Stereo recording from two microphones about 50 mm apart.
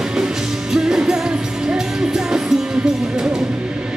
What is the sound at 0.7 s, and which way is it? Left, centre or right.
Music, centre.